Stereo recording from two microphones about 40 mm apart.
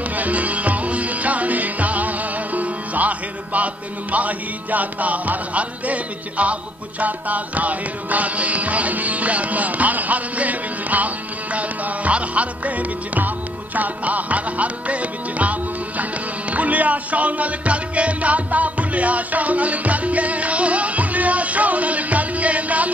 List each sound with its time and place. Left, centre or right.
0.1 s music: right